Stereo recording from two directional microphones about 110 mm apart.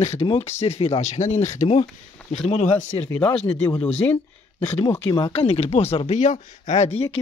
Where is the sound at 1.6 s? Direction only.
70° left (ahead or behind).